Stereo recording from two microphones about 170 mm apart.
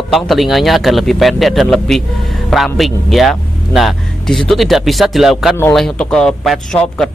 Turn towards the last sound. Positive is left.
turn(degrees=5)  # may be behind; listen again after turning